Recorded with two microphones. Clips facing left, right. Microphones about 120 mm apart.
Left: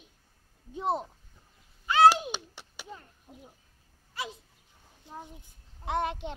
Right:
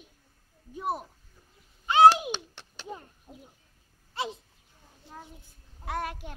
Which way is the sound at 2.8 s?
20° right (ahead or behind).